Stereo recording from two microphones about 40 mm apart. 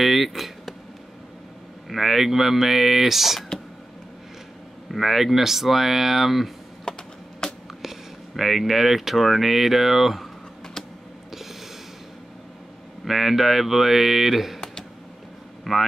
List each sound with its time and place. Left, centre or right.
0.0 s speech: centre
1.9 s speech: centre
4.9 s speech: centre
6.8 s a sound: centre
7.8 s speech: centre
13.0 s speech: centre